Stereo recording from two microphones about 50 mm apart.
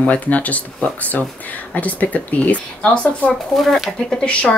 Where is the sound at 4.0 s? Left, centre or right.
Centre.